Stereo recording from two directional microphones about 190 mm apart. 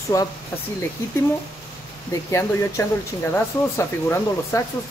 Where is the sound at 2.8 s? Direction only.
15° left (ahead or behind).